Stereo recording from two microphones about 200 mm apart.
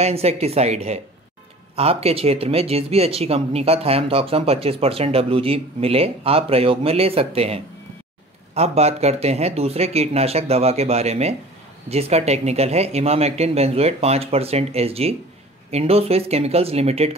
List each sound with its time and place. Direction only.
0.0 s speech: 30° right (ahead or behind)